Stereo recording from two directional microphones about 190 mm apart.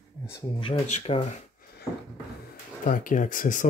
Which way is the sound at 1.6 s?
50° left (ahead or behind).